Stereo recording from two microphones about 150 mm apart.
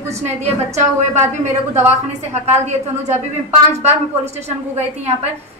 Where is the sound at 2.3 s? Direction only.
50° right (ahead or behind).